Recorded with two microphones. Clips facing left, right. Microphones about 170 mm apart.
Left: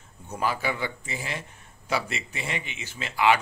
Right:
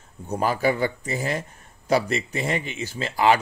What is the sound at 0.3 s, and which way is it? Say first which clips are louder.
Speech: right 6 dB; 45° right (ahead or behind).